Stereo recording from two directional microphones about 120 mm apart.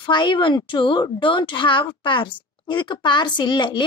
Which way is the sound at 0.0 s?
40° left (ahead or behind).